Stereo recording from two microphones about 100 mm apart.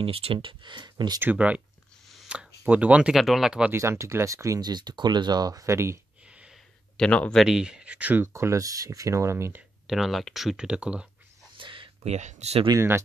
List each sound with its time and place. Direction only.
0.0 s speech: 70° right (ahead or behind); by 1.2 s 45° right (ahead or behind)
1.2 s speech: 15° right (ahead or behind)
2.2 s a sound: 10° right (ahead or behind)
3.2 s speech: centre (ahead or behind)
3.7 s speech: 30° right (ahead or behind)
4.6 s speech: 45° right (ahead or behind); by 5.9 s 30° right (ahead or behind)
6.2 s a sound: 10° right (ahead or behind)
7.0 s speech: 10° left (ahead or behind)
7.3 s speech: 5° right (ahead or behind); by 9.6 s 25° right (ahead or behind)
9.8 s speech: centre (ahead or behind)
11.5 s a sound: 55° right (ahead or behind); by 12.6 s 90° right
12.7 s speech: 25° right (ahead or behind)